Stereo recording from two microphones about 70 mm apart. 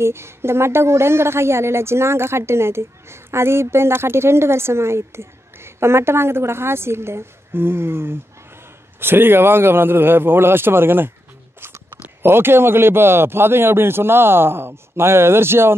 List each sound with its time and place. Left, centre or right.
0.0 s a woman's voice: right